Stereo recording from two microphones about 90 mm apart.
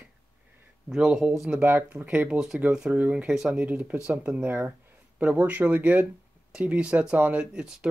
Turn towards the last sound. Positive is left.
turn(degrees=-10)  # may be behind; listen again after turning